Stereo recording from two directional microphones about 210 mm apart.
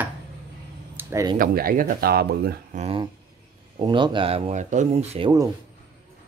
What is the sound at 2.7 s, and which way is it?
Speech, 30° right (ahead or behind).